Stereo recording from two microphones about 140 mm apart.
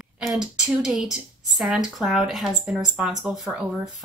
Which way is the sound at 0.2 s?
5° right (ahead or behind).